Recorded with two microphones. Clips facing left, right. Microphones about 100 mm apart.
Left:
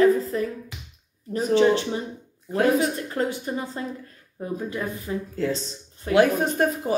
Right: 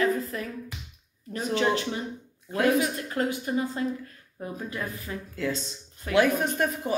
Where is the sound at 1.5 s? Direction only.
30° left (ahead or behind).